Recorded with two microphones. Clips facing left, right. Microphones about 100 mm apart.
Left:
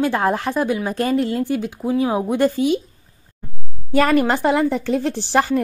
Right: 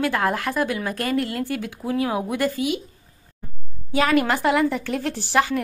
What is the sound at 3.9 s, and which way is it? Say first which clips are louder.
A woman's voice: left 3 dB; 45° left (ahead or behind).